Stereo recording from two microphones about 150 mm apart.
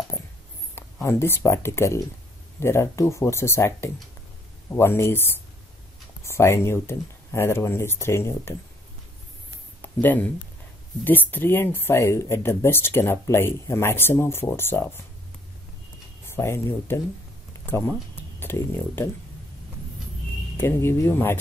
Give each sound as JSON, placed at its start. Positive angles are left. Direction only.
{"t": 0.7, "sound": "speech", "side_deg": 15}
{"t": 9.8, "sound": "speech", "side_deg": 10}
{"t": 16.3, "sound": "speech", "side_deg": 15}
{"t": 20.5, "sound": "speech", "side_deg": 15}